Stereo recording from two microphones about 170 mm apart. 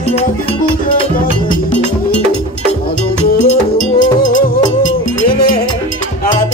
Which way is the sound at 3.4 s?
45° left (ahead or behind).